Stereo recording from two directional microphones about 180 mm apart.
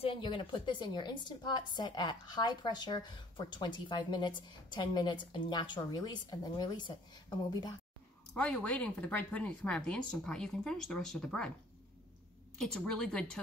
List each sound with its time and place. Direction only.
0.0 s a woman's voice: 25° left (ahead or behind)
8.4 s speech: 5° left (ahead or behind)
12.5 s speech: 5° left (ahead or behind)